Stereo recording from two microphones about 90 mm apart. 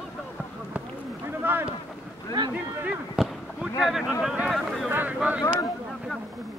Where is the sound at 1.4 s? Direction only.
25° right (ahead or behind).